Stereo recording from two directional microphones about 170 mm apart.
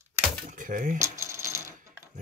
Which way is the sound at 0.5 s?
50° right (ahead or behind).